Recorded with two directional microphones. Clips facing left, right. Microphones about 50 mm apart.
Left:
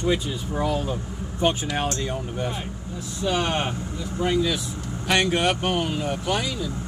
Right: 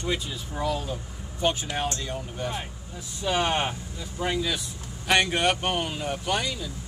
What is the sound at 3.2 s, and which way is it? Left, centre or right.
Speech, centre.